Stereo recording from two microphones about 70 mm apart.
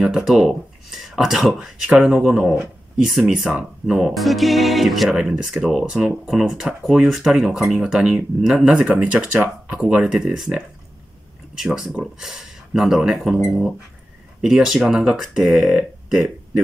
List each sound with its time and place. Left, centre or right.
0.5 s speech: centre